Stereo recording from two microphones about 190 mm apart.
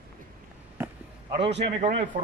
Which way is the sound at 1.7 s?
30° right (ahead or behind).